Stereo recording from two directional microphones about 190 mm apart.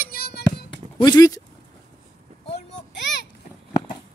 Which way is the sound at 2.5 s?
65° left (ahead or behind).